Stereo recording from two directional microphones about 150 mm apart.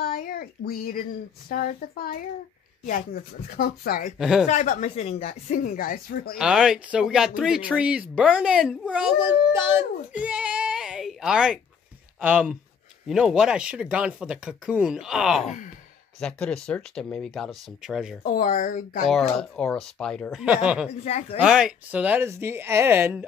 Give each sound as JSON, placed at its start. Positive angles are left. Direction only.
{"t": 0.0, "sound": "a sound", "side_deg": 85}
{"t": 1.5, "sound": "speech", "side_deg": 80}
{"t": 4.2, "sound": "speech", "side_deg": -5}
{"t": 4.5, "sound": "speech", "side_deg": 55}
{"t": 6.3, "sound": "speech", "side_deg": -5}
{"t": 15.4, "sound": "speech", "side_deg": 55}
{"t": 16.2, "sound": "speech", "side_deg": 5}
{"t": 18.3, "sound": "speech", "side_deg": 70}
{"t": 19.0, "sound": "speech", "side_deg": 5}
{"t": 21.0, "sound": "speech", "side_deg": 45}
{"t": 21.4, "sound": "speech", "side_deg": -5}